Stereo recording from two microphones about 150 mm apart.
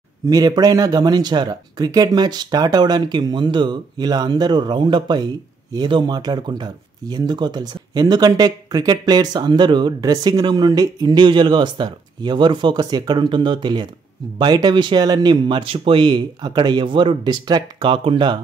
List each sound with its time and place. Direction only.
0.3 s speech: 25° right (ahead or behind)